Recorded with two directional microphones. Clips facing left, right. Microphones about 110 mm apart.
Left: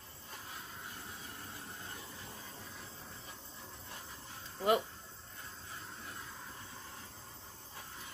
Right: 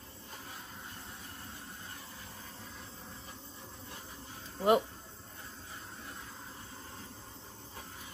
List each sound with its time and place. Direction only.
4.6 s speech: 20° right (ahead or behind)